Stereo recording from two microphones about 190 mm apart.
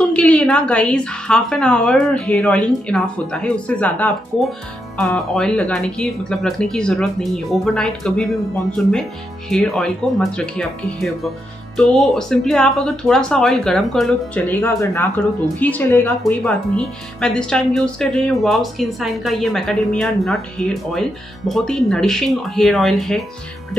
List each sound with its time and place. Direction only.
0.1 s a woman's voice: 5° left (ahead or behind)
9.5 s a woman's voice: centre (ahead or behind)